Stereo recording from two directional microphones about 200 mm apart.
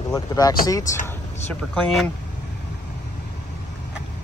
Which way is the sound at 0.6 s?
15° left (ahead or behind).